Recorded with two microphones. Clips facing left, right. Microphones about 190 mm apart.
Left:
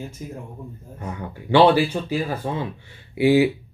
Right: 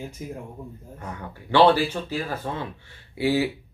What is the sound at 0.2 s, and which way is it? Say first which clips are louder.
Speech: even; 15° right (ahead or behind).